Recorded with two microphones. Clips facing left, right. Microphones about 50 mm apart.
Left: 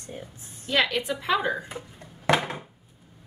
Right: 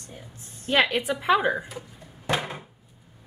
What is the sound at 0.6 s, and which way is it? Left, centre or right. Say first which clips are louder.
A woman's voice: right 2 dB; right.